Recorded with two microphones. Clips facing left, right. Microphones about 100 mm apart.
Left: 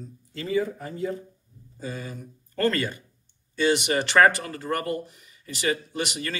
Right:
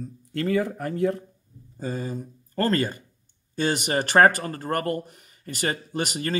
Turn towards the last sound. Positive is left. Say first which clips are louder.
# right 4 dB
turn(degrees=-40)  # may be behind; listen again after turning